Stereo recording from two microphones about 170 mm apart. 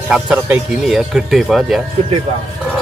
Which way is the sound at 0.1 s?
5° right (ahead or behind).